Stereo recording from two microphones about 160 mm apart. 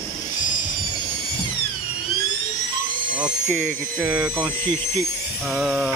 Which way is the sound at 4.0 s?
10° right (ahead or behind).